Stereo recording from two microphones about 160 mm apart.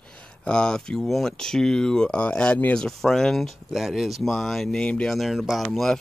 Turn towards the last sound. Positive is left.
turn(degrees=0)  # may be behind; listen again after turning